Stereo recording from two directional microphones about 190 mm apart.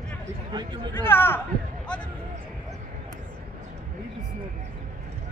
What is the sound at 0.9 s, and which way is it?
Speech, 10° left (ahead or behind).